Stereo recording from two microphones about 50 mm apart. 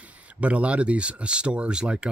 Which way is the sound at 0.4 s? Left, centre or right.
Right.